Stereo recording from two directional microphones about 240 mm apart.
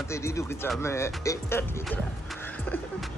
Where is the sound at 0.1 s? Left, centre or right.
Centre.